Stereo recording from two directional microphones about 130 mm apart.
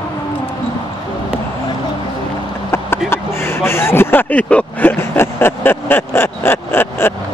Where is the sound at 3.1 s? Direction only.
20° left (ahead or behind).